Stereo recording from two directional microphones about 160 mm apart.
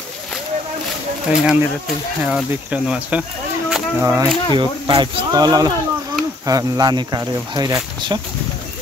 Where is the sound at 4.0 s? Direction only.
15° right (ahead or behind).